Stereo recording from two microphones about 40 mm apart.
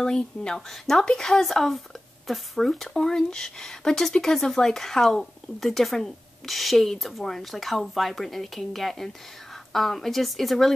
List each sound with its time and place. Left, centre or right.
0.0 s a woman's voice: centre